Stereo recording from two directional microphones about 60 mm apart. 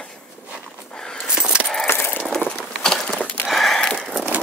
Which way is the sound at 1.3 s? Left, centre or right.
Centre.